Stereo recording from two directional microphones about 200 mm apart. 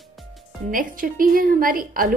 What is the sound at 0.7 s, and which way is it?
A woman's voice, 45° right (ahead or behind).